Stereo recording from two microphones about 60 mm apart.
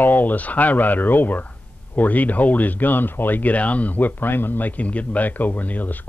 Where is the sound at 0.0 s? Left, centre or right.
Left.